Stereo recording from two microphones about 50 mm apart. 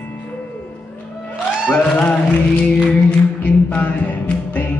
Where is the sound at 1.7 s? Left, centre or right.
Left.